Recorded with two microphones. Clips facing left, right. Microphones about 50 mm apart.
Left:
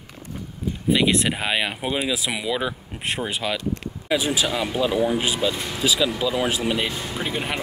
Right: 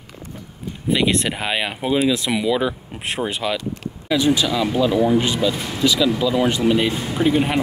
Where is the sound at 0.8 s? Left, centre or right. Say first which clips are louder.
Right 1 dB; centre.